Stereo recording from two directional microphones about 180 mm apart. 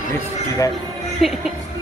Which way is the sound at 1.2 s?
Centre (ahead or behind).